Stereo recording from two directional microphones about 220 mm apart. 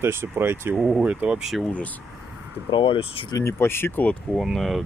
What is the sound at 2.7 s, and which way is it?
Speech, 25° left (ahead or behind).